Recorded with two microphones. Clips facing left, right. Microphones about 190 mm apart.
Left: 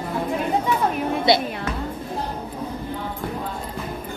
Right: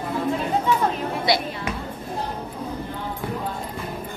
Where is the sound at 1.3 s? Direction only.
25° left (ahead or behind).